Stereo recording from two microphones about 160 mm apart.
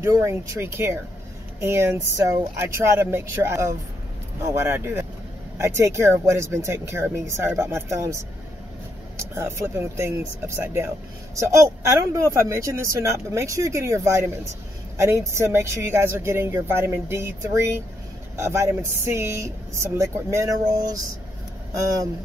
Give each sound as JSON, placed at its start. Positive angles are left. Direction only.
{"t": 0.0, "sound": "speech", "side_deg": -20}